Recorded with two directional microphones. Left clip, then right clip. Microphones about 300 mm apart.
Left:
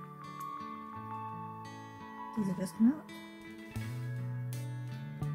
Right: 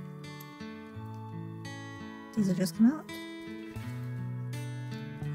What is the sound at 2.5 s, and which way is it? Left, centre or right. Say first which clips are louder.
Speech: right 4 dB; right.